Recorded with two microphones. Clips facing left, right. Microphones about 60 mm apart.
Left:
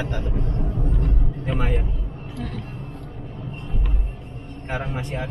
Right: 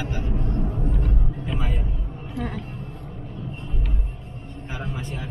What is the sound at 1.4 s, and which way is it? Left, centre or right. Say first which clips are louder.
Speech: left 6 dB; left.